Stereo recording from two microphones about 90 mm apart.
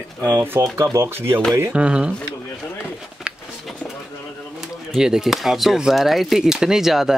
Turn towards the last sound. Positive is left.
turn(degrees=-5)  # may be behind; listen again after turning